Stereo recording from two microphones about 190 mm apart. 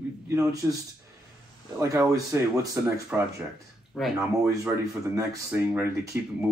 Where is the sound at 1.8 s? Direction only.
15° right (ahead or behind).